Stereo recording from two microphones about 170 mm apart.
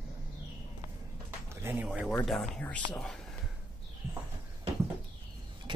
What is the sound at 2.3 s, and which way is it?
Speech, 5° left (ahead or behind).